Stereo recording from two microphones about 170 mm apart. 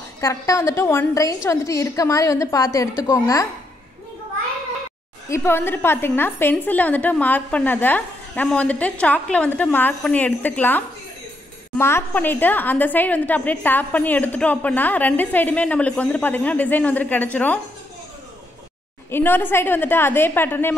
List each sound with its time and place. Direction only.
0.2 s a woman's voice: 20° left (ahead or behind)
5.3 s a woman's voice: 15° left (ahead or behind)
11.8 s a woman's voice: 10° left (ahead or behind)
19.0 s a woman's voice: 15° left (ahead or behind)